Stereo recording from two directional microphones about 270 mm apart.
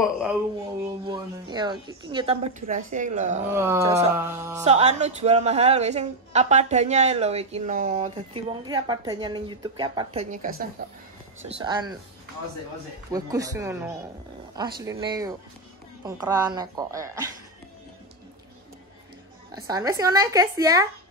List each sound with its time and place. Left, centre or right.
0.0 s speech: centre
1.0 s a woman's voice: centre
3.5 s a woman's voice: centre
4.6 s a woman's voice: right
10.8 s speech: right
11.4 s a woman's voice: centre
13.1 s a woman's voice: centre
19.5 s a woman's voice: centre